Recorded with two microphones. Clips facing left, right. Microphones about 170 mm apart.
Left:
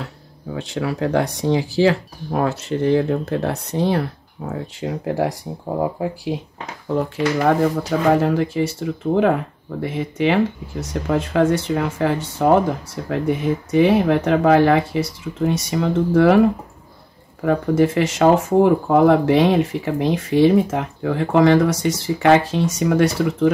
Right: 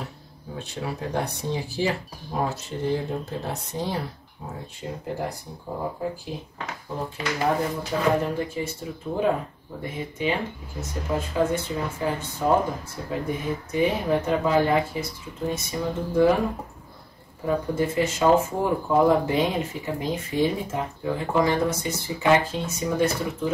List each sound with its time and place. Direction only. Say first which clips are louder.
0.6 s speech: left 9 dB; 90° left
8.1 s speech: left 9 dB; 90° left